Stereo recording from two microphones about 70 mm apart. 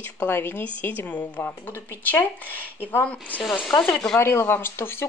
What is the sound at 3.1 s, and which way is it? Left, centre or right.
Speech, left.